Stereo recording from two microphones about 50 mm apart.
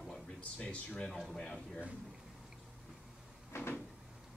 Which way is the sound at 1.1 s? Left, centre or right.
Centre.